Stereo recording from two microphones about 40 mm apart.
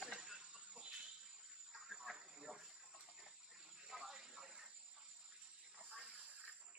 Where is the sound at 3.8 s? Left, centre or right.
Centre.